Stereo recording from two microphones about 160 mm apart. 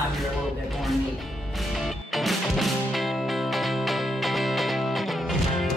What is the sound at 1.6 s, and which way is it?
Music, centre (ahead or behind).